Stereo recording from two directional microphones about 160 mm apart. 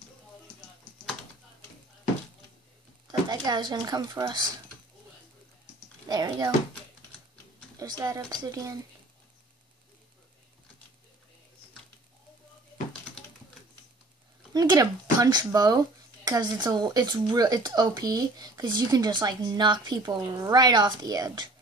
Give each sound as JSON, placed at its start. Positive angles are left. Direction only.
{"t": 3.1, "sound": "speech", "side_deg": -25}
{"t": 6.0, "sound": "speech", "side_deg": -25}
{"t": 7.7, "sound": "speech", "side_deg": -25}
{"t": 14.5, "sound": "speech", "side_deg": -25}